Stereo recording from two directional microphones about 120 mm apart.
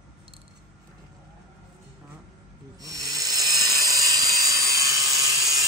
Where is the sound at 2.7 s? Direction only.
30° right (ahead or behind).